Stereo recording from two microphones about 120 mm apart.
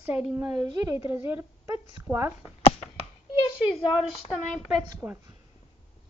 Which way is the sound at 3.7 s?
50° left (ahead or behind).